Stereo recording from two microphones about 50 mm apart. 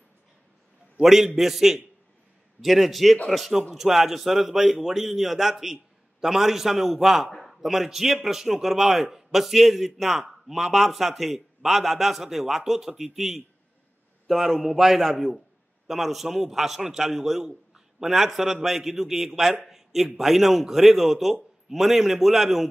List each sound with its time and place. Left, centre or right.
1.0 s a man's voice: centre